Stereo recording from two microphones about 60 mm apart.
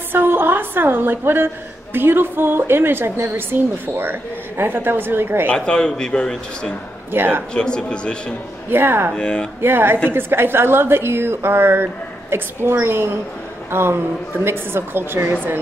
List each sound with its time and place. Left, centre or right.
0.1 s a sound: right
2.0 s a woman's voice: right
5.5 s speech: centre
7.1 s a woman's voice: right
7.5 s speech: centre
8.6 s a woman's voice: right
9.1 s speech: centre
9.6 s a woman's voice: right